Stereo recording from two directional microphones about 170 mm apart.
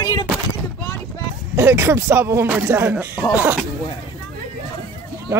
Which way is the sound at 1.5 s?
15° right (ahead or behind).